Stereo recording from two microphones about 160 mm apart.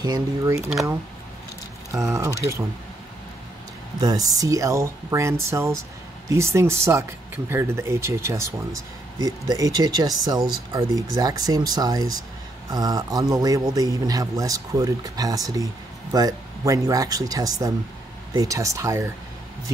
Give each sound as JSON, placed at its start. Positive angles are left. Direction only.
{"t": 0.0, "sound": "speech", "side_deg": -20}
{"t": 1.9, "sound": "speech", "side_deg": -20}
{"t": 4.0, "sound": "speech", "side_deg": -25}